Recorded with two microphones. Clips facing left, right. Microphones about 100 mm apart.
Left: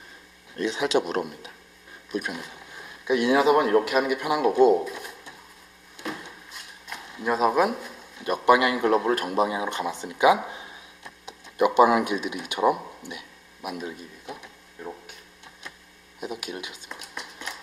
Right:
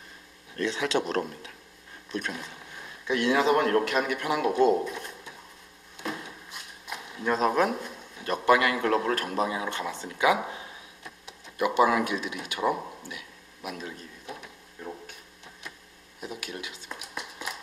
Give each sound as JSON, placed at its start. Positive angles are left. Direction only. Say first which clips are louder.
{"t": 0.6, "sound": "a man's voice", "louder": "left 3 dB", "side_deg": 15}
{"t": 7.2, "sound": "a man's voice", "louder": "left 2 dB", "side_deg": 10}
{"t": 16.2, "sound": "speech", "louder": "left 4 dB", "side_deg": 20}
{"t": 16.9, "sound": "a sound", "louder": "right 2 dB", "side_deg": -5}